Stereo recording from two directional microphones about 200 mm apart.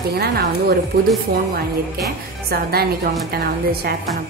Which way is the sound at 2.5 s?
50° right (ahead or behind).